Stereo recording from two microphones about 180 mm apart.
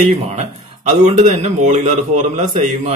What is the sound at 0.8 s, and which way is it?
A man's voice, 40° right (ahead or behind).